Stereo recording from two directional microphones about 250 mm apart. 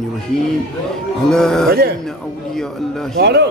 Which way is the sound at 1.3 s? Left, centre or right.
Centre.